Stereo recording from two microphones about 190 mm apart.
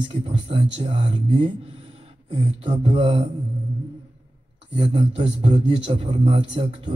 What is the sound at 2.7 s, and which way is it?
Speech, 30° right (ahead or behind).